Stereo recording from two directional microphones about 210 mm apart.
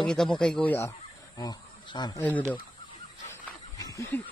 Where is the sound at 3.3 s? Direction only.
15° left (ahead or behind).